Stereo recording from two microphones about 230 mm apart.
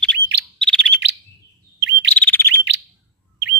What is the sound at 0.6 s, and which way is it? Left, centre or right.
Bird, centre.